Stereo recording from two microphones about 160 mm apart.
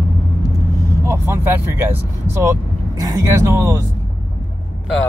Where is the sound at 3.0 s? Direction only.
20° right (ahead or behind).